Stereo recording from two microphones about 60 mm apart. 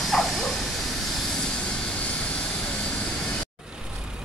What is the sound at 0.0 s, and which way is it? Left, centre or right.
Vehicle, centre.